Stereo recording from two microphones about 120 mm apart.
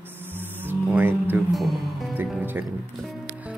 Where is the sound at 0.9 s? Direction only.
15° right (ahead or behind).